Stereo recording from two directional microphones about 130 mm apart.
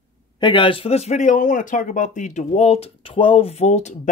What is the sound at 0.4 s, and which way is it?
Speech, 40° left (ahead or behind).